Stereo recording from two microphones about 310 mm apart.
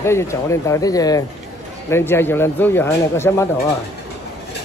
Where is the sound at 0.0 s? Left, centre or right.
Centre.